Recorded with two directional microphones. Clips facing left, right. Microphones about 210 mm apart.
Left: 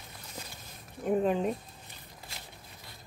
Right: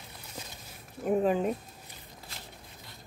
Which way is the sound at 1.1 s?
5° right (ahead or behind).